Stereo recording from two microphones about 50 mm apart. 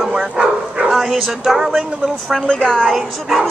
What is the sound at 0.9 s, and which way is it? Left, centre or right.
Speech, centre.